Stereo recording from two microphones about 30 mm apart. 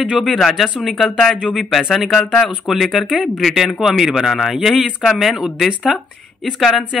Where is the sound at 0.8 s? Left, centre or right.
Centre.